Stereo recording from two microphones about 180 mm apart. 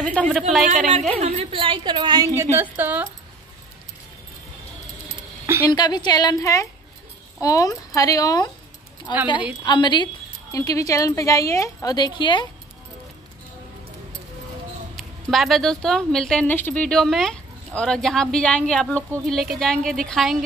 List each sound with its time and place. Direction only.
0.0 s a woman's voice: 5° left (ahead or behind)
1.1 s a woman's voice: 35° right (ahead or behind); by 3.1 s 10° right (ahead or behind)
5.7 s speech: 25° left (ahead or behind)
15.3 s a woman's voice: centre (ahead or behind)